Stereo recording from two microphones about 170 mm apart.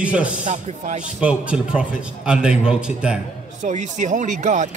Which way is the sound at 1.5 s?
5° right (ahead or behind).